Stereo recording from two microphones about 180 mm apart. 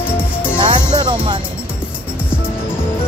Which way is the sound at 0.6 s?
25° right (ahead or behind).